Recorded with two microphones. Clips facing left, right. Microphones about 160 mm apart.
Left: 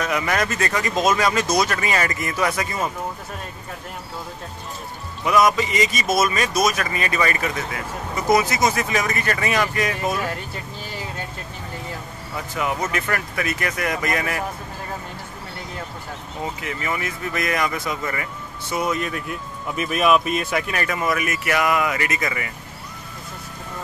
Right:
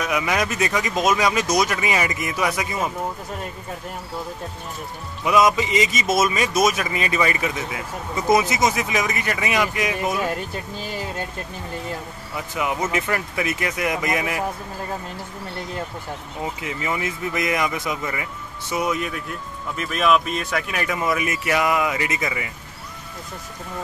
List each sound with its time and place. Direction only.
0.0 s speech: 10° right (ahead or behind)
5.2 s speech: 20° right (ahead or behind)
12.5 s speech: 15° right (ahead or behind)
16.6 s speech: 20° right (ahead or behind)
19.7 s speech: 10° left (ahead or behind)
20.7 s speech: 10° right (ahead or behind)